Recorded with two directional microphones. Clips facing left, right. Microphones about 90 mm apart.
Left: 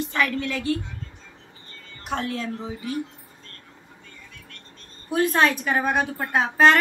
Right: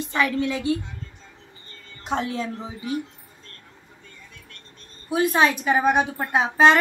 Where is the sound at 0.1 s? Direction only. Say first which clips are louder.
Right 5 dB; 15° right (ahead or behind).